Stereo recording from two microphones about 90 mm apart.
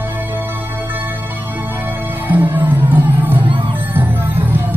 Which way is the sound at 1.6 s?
20° right (ahead or behind).